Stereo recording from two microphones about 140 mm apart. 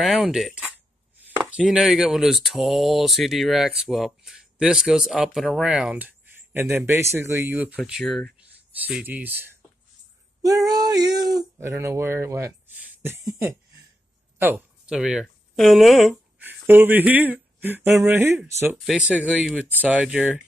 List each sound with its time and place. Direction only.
0.0 s speech: 5° right (ahead or behind)
8.0 s speech: 5° left (ahead or behind)
8.4 s speech: 10° right (ahead or behind)
10.4 s female singing: 25° right (ahead or behind)
11.3 s speech: 20° right (ahead or behind)
14.4 s a sound: 15° right (ahead or behind)
15.0 s speech: 5° right (ahead or behind)
16.3 s speech: 15° right (ahead or behind)